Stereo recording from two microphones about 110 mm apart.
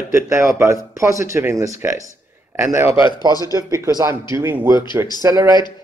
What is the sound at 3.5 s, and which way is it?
Speech, 30° right (ahead or behind).